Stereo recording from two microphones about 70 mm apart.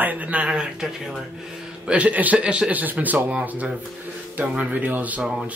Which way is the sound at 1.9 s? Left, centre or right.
Centre.